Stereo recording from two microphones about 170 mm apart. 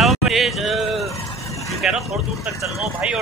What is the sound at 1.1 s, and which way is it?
Vehicle, 20° left (ahead or behind).